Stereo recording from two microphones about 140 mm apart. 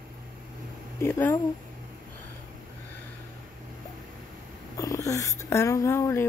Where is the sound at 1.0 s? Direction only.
15° left (ahead or behind).